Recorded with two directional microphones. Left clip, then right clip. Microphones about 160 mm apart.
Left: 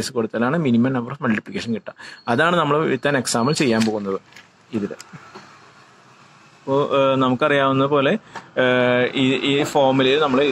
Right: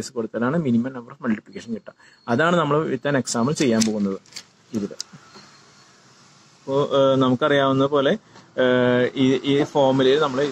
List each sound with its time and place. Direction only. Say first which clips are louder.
0.0 s speech: left 4 dB; 30° left (ahead or behind)
6.7 s speech: left 1 dB; 25° left (ahead or behind)